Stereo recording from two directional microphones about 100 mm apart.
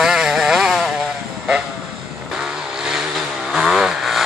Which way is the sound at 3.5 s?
5° right (ahead or behind).